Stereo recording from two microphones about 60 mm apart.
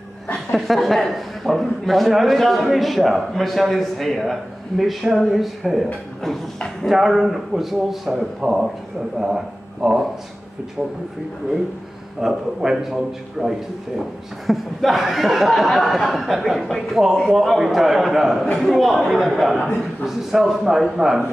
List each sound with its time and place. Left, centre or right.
0.6 s a man's voice: centre
6.9 s a man's voice: centre
12.2 s a man's voice: centre